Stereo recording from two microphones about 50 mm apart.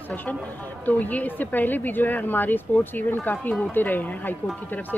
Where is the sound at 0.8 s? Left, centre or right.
Left.